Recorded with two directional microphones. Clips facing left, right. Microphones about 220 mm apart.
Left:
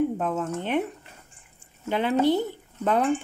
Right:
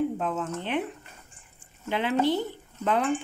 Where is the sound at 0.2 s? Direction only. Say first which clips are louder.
Left 3 dB; 45° left (ahead or behind).